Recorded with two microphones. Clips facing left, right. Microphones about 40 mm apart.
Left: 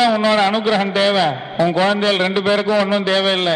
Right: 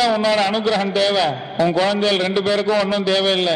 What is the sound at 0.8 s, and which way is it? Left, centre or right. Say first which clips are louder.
A man's voice: left 2 dB; left.